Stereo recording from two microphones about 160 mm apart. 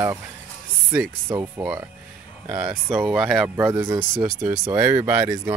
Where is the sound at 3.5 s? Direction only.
20° right (ahead or behind).